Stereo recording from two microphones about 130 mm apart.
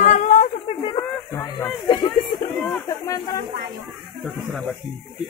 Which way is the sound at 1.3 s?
30° left (ahead or behind).